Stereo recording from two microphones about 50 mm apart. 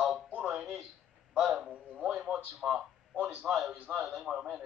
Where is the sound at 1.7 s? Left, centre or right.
Right.